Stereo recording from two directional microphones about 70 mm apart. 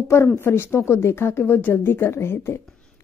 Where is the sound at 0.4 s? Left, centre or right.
Left.